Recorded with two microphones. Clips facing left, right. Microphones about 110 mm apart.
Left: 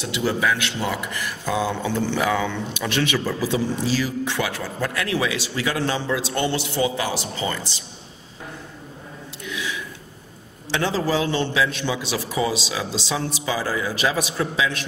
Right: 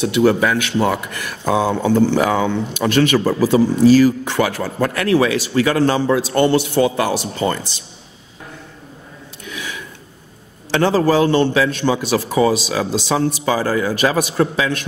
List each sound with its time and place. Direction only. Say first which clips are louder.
0.0 s speech: right 8 dB; 60° right (ahead or behind)
9.5 s a sound: even; 50° right (ahead or behind)
10.7 s speech: right 7 dB; 50° right (ahead or behind)